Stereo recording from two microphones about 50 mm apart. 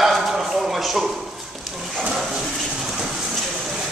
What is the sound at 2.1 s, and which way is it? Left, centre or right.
Water, centre.